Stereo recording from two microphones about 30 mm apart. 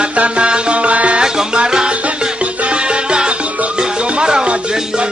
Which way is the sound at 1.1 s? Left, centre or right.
Right.